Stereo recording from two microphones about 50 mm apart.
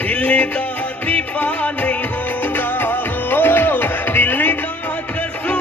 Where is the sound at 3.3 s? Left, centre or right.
Left.